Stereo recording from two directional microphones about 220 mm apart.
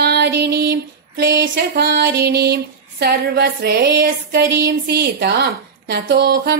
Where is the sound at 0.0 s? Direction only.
50° right (ahead or behind).